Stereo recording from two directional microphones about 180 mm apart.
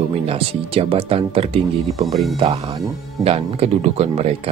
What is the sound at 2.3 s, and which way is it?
Speech, 30° right (ahead or behind).